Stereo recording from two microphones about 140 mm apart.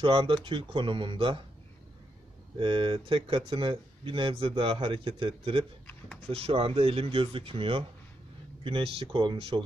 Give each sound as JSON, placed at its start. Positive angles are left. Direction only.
{"t": 0.0, "sound": "speech", "side_deg": -40}
{"t": 2.6, "sound": "speech", "side_deg": -40}